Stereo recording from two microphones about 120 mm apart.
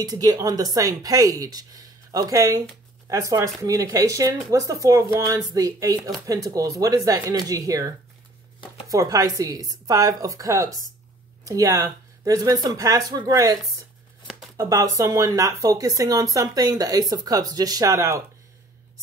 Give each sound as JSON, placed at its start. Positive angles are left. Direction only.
{"t": 0.0, "sound": "speech", "side_deg": -30}